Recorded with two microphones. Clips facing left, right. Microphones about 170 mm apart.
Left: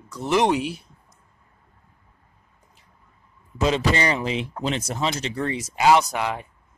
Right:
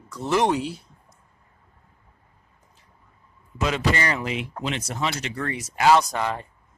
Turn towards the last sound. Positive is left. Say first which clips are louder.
# even
turn(degrees=10)  # may be behind; listen again after turning